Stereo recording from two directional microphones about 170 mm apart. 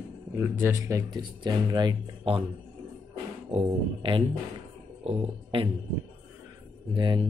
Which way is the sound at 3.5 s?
30° right (ahead or behind).